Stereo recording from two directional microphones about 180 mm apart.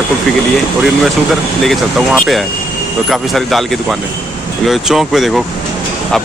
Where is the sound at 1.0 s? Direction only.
Centre (ahead or behind).